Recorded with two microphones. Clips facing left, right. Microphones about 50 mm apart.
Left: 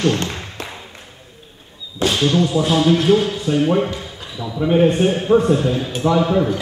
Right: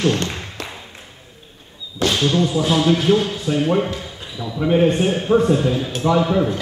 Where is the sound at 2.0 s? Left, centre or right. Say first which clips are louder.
Left 1 dB; centre.